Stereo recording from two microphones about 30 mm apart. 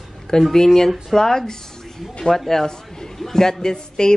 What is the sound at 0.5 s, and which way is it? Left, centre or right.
Speech, centre.